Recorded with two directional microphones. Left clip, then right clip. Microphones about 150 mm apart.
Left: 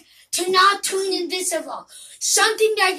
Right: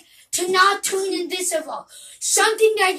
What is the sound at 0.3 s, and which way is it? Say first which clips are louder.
Speech: left 1 dB; 25° left (ahead or behind).